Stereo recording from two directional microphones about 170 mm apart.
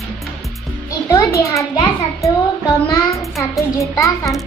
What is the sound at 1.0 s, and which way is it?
Speech, 15° left (ahead or behind).